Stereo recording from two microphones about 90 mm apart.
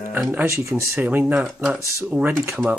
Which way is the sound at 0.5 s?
30° right (ahead or behind).